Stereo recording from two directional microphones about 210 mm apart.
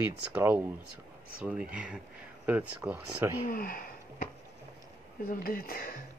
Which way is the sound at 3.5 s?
45° left (ahead or behind).